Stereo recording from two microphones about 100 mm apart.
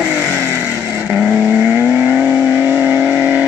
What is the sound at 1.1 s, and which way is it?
Vehicle, 15° right (ahead or behind).